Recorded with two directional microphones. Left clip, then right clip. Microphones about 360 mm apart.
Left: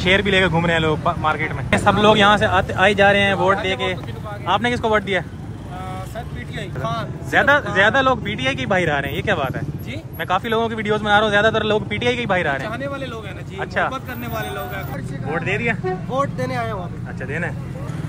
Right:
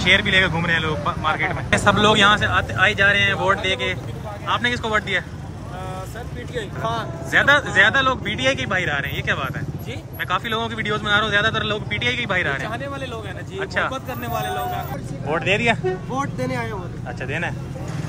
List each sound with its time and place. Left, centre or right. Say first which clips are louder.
0.0 s speech: even; centre
6.5 s speech: right 1 dB; centre